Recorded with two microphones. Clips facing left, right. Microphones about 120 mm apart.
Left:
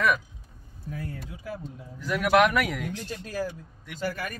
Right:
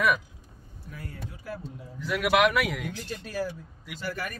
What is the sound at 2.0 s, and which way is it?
Speech, centre (ahead or behind).